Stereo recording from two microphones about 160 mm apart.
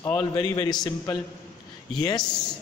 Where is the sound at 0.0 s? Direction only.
25° left (ahead or behind).